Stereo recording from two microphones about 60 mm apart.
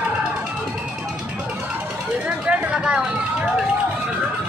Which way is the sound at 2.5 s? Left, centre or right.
Centre.